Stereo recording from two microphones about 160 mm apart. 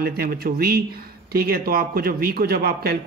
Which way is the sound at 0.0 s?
75° right (ahead or behind).